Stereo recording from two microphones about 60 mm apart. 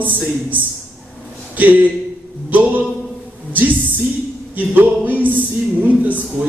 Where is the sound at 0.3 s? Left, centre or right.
Right.